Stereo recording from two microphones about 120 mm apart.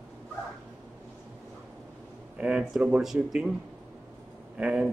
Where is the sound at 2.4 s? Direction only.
10° right (ahead or behind).